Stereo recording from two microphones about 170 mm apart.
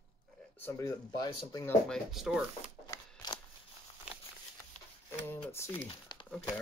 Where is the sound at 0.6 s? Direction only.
20° left (ahead or behind).